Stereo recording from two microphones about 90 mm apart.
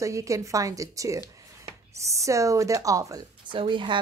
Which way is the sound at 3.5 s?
65° right (ahead or behind).